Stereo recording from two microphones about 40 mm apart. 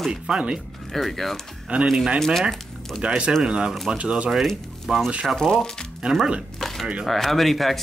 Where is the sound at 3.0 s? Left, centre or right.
Right.